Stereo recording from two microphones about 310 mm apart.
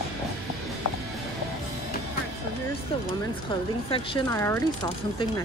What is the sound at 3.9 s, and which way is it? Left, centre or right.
Speech, centre.